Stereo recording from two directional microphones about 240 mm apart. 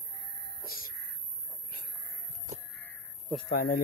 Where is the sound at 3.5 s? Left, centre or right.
Left.